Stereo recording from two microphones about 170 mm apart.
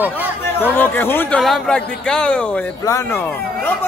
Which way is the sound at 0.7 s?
10° left (ahead or behind).